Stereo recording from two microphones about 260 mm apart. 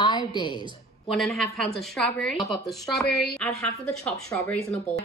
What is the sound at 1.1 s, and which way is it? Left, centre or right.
A woman's voice, centre.